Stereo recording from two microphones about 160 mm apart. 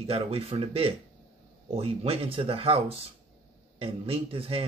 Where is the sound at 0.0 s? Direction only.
40° right (ahead or behind).